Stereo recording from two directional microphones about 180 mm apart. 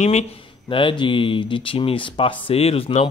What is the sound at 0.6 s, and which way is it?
Speech, 30° left (ahead or behind).